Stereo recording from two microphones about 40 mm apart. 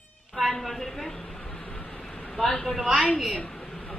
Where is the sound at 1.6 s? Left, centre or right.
Left.